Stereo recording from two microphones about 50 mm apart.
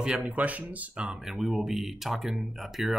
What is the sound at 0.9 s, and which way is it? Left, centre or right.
Speech, centre.